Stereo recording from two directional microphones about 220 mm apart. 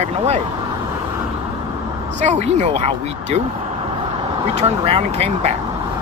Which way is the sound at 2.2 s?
30° right (ahead or behind).